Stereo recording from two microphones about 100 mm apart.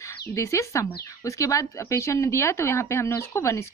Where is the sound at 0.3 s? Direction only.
30° left (ahead or behind).